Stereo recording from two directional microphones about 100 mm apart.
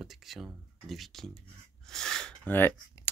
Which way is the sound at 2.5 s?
20° left (ahead or behind).